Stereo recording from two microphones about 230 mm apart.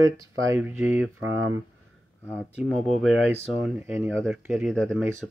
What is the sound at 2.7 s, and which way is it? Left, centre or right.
Speech, centre.